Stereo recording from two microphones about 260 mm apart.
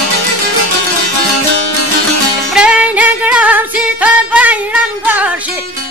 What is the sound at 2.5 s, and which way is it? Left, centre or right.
Music, centre.